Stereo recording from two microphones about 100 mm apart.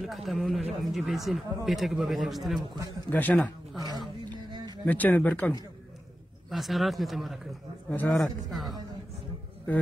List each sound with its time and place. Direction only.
0.0 s speech: centre (ahead or behind)
3.1 s speech: 15° left (ahead or behind)
3.7 s speech: 40° right (ahead or behind)
4.5 s music: 50° right (ahead or behind)
4.8 s speech: 15° left (ahead or behind)
6.5 s speech: centre (ahead or behind)